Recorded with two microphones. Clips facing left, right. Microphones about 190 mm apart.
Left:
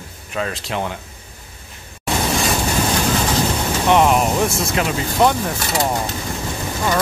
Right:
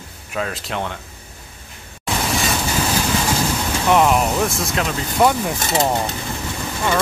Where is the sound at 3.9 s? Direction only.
5° left (ahead or behind).